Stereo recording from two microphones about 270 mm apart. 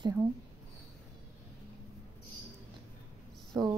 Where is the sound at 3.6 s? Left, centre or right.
Centre.